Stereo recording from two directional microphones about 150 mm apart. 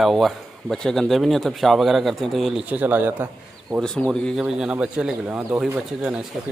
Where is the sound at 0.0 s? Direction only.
Centre (ahead or behind).